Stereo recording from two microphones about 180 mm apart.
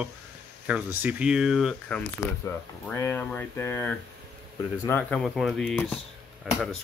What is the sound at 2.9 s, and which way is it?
Speech, 10° left (ahead or behind).